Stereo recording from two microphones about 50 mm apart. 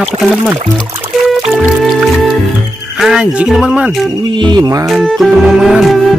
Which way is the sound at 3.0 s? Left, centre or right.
Centre.